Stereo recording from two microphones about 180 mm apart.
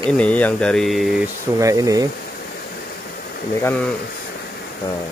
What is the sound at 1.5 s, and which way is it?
Speech, 20° right (ahead or behind).